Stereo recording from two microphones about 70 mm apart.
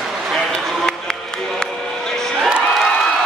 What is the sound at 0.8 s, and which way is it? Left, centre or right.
Music, centre.